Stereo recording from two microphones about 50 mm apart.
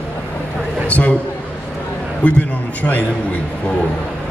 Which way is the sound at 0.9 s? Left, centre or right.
Left.